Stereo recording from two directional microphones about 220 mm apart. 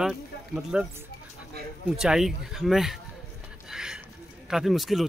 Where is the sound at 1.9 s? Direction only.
5° right (ahead or behind).